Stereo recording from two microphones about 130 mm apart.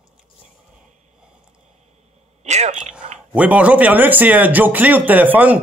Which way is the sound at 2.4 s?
60° right (ahead or behind).